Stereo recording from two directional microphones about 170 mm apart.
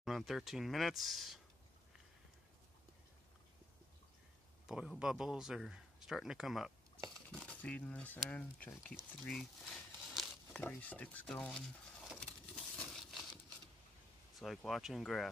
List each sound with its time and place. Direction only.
0.0 s speech: centre (ahead or behind)
4.6 s speech: 5° right (ahead or behind)
12.7 s a sound: centre (ahead or behind)
14.4 s speech: centre (ahead or behind)